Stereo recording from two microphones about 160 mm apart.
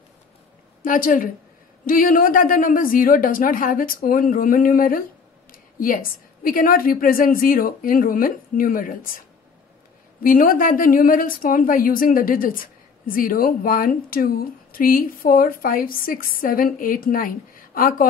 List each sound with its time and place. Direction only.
0.8 s a woman's voice: 60° left (ahead or behind)
10.2 s a woman's voice: 60° left (ahead or behind)